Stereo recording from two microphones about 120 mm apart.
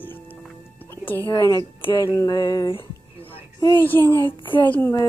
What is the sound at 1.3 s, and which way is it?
Speech, 30° left (ahead or behind).